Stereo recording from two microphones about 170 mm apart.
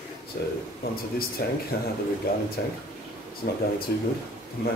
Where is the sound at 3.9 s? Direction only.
70° left (ahead or behind).